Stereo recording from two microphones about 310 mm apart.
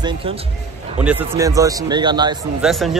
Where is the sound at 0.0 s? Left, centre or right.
Centre.